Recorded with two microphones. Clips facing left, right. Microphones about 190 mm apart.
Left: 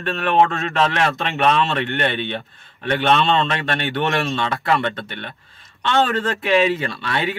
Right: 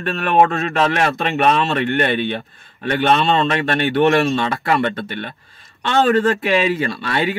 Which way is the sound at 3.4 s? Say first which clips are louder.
Right 5 dB; 5° right (ahead or behind).